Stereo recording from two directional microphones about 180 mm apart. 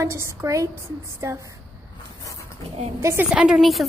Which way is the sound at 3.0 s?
15° right (ahead or behind).